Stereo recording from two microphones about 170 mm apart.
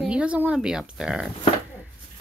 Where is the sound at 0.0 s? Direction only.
5° right (ahead or behind).